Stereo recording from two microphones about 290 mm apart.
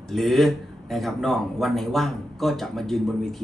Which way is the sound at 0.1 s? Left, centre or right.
Centre.